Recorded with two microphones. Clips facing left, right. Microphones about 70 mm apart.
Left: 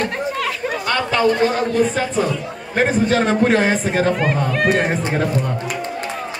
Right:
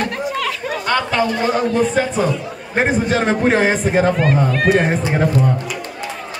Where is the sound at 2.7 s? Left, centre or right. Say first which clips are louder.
Even; right.